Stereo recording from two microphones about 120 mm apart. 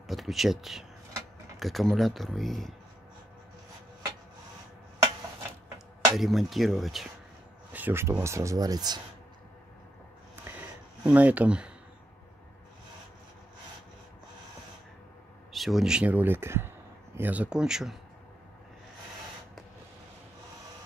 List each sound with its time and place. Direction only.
0.0 s speech: centre (ahead or behind)
6.1 s speech: centre (ahead or behind)
7.7 s speech: 15° right (ahead or behind); by 9.0 s 35° right (ahead or behind)
10.5 s a sound: 20° right (ahead or behind)
11.1 s speech: 10° right (ahead or behind)
15.5 s speech: centre (ahead or behind)